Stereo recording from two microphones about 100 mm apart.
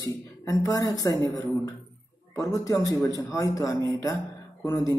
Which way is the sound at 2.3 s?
35° left (ahead or behind).